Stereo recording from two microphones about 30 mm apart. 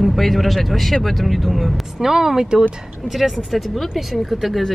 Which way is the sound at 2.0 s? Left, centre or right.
Centre.